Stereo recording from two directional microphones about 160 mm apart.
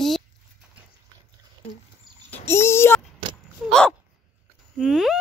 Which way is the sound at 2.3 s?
15° left (ahead or behind).